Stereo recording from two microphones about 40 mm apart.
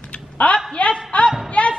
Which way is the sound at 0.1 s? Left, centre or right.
Left.